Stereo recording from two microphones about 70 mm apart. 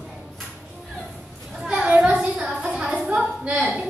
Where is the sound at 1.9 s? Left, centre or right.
Centre.